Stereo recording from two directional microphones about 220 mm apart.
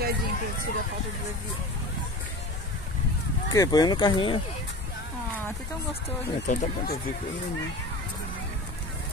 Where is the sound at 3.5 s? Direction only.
15° left (ahead or behind).